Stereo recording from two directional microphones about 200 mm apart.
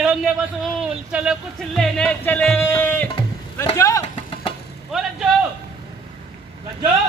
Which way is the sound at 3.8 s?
15° left (ahead or behind).